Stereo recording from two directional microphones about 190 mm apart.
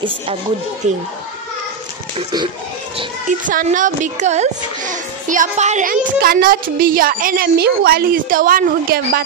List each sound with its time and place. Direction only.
0.8 s speech: 40° right (ahead or behind)
2.1 s a child's voice: 25° right (ahead or behind)
3.3 s a child's voice: 45° right (ahead or behind)